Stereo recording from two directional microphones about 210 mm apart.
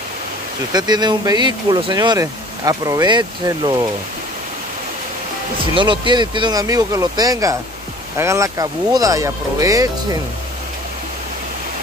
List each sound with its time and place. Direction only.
0.7 s speech: 20° right (ahead or behind)
5.8 s speech: 20° right (ahead or behind)